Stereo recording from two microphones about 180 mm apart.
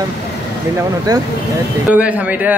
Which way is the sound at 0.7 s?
20° right (ahead or behind).